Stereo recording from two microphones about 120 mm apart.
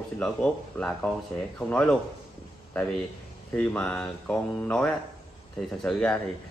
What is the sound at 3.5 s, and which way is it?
Speech, 10° left (ahead or behind).